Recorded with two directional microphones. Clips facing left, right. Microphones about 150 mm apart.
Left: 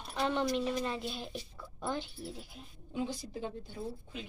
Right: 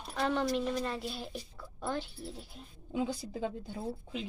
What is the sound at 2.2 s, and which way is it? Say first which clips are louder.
Speech: even; 5° left (ahead or behind).